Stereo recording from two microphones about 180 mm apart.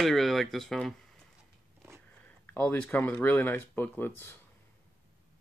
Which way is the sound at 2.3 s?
10° left (ahead or behind).